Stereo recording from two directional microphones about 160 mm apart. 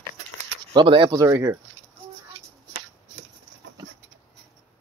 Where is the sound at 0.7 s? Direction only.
30° right (ahead or behind).